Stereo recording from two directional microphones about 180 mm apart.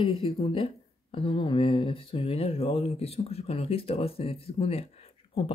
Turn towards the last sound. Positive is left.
turn(degrees=30)  # may be behind; listen again after turning